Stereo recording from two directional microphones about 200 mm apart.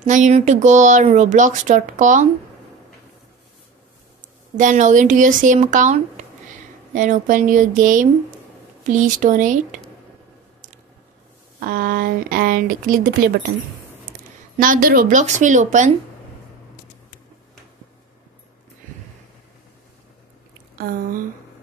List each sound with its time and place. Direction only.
0.0 s speech: 40° right (ahead or behind)
4.6 s speech: 40° right (ahead or behind)
11.6 s speech: 50° right (ahead or behind)
14.6 s speech: 45° right (ahead or behind)
20.7 s speech: 50° right (ahead or behind)